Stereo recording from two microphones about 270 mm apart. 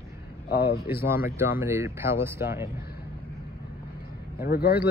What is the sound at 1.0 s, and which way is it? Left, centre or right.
A man's voice, centre.